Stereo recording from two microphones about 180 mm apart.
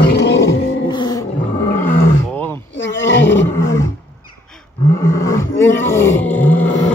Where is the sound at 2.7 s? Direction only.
90° left.